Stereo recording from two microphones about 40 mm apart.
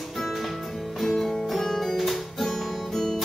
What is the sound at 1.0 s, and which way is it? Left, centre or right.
Music, centre.